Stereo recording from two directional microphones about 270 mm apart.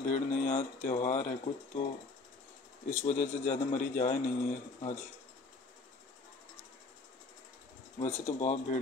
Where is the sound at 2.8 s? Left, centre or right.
Left.